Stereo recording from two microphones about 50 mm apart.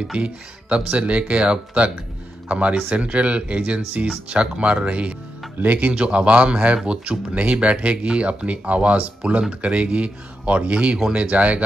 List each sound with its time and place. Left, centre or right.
0.1 s speech: right
5.9 s speech: right